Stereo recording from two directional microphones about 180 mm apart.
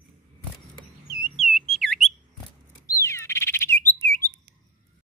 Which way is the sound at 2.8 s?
15° left (ahead or behind).